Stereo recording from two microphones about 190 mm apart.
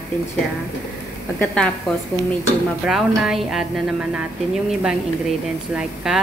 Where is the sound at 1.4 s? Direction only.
5° left (ahead or behind).